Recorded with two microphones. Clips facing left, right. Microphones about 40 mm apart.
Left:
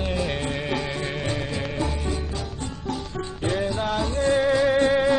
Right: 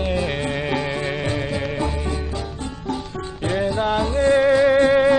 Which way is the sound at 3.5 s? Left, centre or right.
Centre.